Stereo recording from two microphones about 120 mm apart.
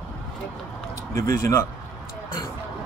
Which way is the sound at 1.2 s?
25° left (ahead or behind).